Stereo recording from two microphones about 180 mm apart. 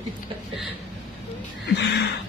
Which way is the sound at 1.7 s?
70° left (ahead or behind).